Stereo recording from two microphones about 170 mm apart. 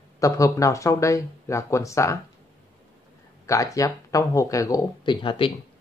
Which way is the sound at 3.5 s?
20° left (ahead or behind).